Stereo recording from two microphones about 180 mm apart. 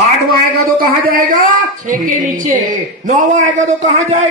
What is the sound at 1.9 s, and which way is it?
A man's voice, 45° right (ahead or behind).